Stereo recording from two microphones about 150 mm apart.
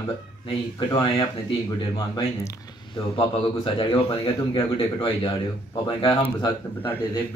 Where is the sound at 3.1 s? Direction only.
35° left (ahead or behind).